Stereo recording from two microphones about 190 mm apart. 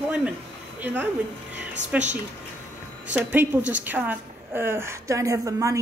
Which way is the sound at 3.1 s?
10° right (ahead or behind).